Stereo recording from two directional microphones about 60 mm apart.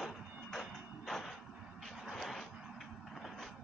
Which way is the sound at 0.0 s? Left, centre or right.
Centre.